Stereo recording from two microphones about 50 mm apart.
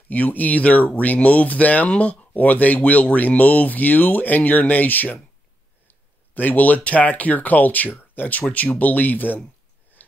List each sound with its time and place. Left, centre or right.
0.1 s speech: left